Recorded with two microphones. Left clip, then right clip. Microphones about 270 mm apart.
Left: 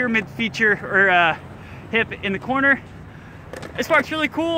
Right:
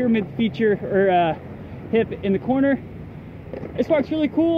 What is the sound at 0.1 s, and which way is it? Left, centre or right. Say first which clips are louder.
Speech: left 1 dB; centre.